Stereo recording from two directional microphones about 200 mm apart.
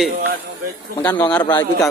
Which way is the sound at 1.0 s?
10° left (ahead or behind).